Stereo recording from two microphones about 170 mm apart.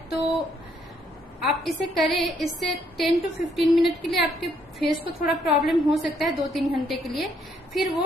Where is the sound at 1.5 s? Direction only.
Centre (ahead or behind).